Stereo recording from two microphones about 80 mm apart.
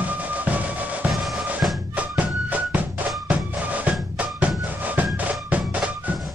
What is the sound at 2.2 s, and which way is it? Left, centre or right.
Music, centre.